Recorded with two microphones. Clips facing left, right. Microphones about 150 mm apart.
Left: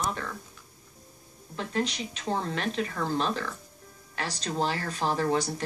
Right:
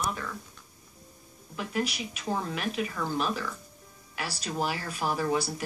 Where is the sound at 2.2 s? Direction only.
30° left (ahead or behind).